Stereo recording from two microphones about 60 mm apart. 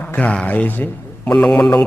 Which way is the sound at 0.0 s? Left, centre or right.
Left.